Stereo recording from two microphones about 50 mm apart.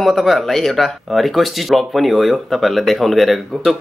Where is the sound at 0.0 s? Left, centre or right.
Centre.